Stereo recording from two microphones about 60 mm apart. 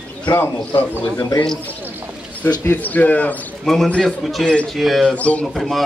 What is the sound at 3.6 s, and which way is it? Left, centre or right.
A man's voice, centre.